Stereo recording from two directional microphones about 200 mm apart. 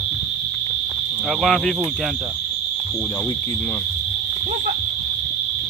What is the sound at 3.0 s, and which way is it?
Speech, 10° left (ahead or behind).